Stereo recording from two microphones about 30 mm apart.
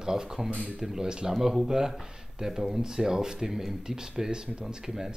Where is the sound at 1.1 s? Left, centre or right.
Right.